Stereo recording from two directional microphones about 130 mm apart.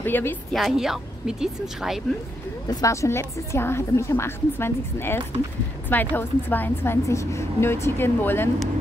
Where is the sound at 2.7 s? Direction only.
25° left (ahead or behind).